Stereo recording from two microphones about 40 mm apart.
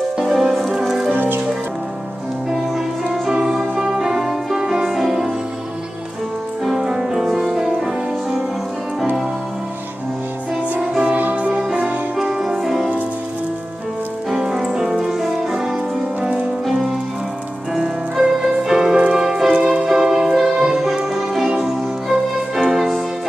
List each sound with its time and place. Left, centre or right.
0.2 s music: centre
1.1 s music: right
3.1 s music: centre
6.6 s music: centre
10.8 s music: centre
11.3 s music: right
12.2 s music: centre
14.3 s music: centre
16.2 s music: right
17.7 s music: centre